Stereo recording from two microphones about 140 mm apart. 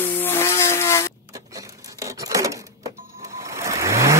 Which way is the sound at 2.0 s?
25° right (ahead or behind).